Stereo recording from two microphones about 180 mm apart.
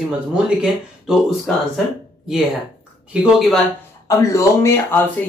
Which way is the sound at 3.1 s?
5° right (ahead or behind).